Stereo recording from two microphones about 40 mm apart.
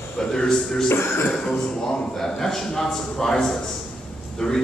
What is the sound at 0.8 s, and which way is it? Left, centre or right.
Speech, left.